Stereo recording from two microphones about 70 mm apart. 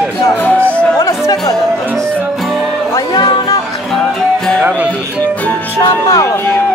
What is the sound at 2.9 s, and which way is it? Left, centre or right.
Music, left.